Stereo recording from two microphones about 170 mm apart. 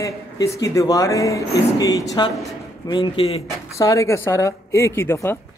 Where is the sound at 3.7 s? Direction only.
20° left (ahead or behind).